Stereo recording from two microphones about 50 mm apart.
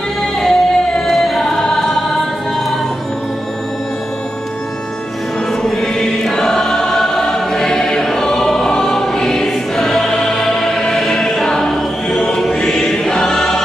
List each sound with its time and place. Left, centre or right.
0.4 s choir: centre
5.5 s choir: centre